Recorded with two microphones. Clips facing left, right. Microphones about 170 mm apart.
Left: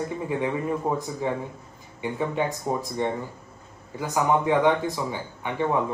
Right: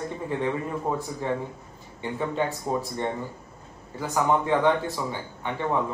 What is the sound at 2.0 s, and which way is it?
Speech, 15° left (ahead or behind).